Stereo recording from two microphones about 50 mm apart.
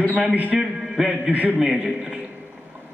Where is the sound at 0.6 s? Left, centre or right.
Centre.